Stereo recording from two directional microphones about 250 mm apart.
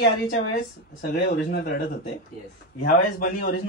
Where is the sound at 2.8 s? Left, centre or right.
Left.